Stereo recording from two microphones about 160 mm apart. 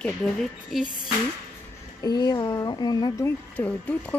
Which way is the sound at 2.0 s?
25° left (ahead or behind).